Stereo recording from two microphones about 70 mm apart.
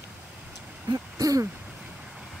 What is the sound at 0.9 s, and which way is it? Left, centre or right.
Hoot, right.